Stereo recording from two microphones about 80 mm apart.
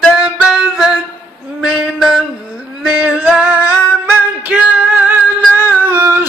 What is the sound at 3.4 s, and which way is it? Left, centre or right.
Music, centre.